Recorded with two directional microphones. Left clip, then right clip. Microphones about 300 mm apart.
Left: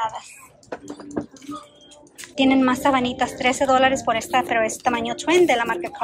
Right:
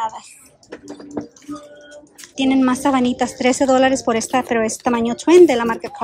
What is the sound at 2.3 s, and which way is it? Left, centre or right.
A woman's voice, centre.